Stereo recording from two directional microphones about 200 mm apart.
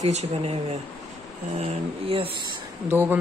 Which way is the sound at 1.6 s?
30° right (ahead or behind).